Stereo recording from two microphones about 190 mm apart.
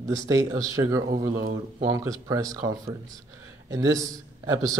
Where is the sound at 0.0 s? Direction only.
15° right (ahead or behind).